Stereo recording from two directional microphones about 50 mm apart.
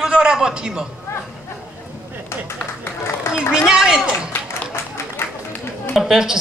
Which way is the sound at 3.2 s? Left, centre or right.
Left.